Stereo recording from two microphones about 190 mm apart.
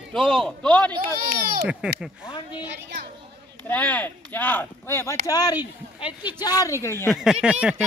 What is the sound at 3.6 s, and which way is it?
Speech, 5° left (ahead or behind).